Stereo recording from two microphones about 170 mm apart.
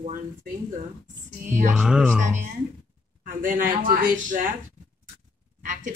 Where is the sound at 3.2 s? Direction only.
50° right (ahead or behind).